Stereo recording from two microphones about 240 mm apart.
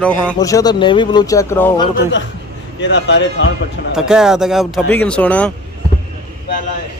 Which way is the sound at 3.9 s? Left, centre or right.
Centre.